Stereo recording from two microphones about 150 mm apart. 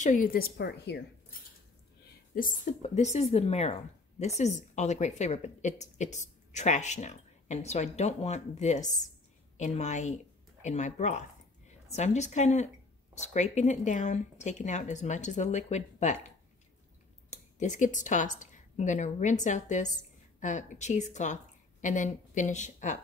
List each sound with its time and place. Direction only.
0.0 s a woman's voice: 65° left (ahead or behind); by 0.9 s 90° left
2.3 s a woman's voice: 70° left (ahead or behind)
2.8 s a woman's voice: 50° left (ahead or behind)
17.3 s a woman's voice: 55° left (ahead or behind)